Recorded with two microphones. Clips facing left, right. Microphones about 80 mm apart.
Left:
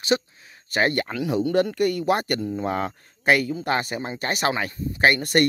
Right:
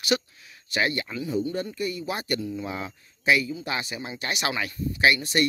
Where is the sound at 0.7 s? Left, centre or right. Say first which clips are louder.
Left 4 dB; left.